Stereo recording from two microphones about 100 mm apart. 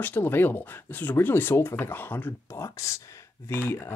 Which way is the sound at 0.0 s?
20° left (ahead or behind).